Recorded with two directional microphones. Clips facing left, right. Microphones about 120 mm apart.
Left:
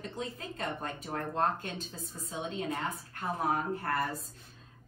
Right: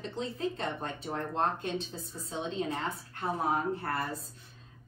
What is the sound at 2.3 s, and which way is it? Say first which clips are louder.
Speech: right 2 dB; 30° right (ahead or behind).